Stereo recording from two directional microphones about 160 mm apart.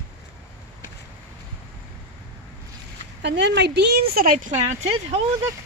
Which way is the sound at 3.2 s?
90° right.